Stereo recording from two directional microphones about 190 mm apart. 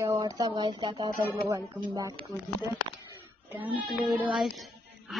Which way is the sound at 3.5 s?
10° right (ahead or behind).